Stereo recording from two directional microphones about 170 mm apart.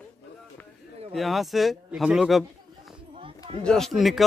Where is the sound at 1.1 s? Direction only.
Centre (ahead or behind).